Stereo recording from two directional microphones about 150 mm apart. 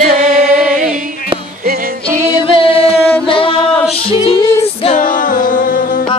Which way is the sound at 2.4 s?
35° left (ahead or behind).